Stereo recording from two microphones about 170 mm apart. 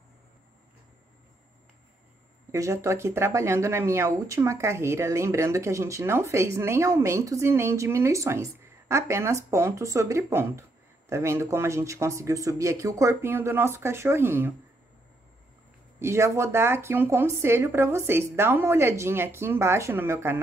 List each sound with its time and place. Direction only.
2.5 s speech: 20° right (ahead or behind)
16.0 s speech: 15° right (ahead or behind)